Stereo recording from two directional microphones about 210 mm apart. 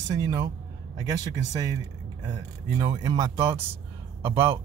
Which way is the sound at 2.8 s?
20° right (ahead or behind).